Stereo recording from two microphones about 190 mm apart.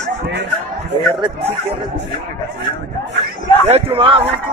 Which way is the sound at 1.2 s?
35° right (ahead or behind).